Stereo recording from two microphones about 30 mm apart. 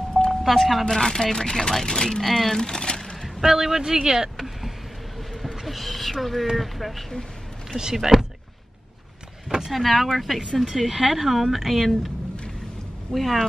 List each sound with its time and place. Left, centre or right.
0.3 s speech: centre
0.8 s speech: centre
2.2 s speech: centre
2.6 s speech: left
3.3 s speech: centre
4.4 s vehicle: centre
5.3 s basketball bounce: centre
6.5 s speech: centre
7.7 s speech: centre
9.7 s speech: centre
13.1 s speech: centre